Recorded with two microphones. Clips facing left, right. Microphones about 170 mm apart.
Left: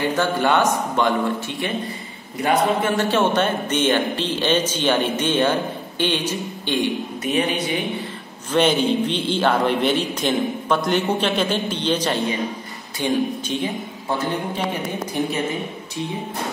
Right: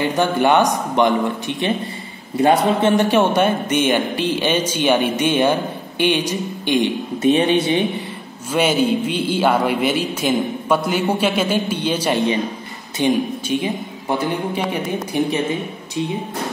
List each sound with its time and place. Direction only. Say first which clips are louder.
0.1 s speech: right 5 dB; 15° right (ahead or behind)
2.4 s speech: right 4 dB; 25° right (ahead or behind)
3.1 s speech: right 3 dB; 15° right (ahead or behind)
7.2 s speech: right 7 dB; 25° right (ahead or behind)
8.5 s speech: right 1 dB; 10° right (ahead or behind)
15.2 s speech: right 4 dB; 15° right (ahead or behind)